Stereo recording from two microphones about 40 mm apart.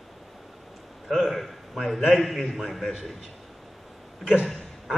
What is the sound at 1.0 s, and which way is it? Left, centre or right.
A man's voice, centre.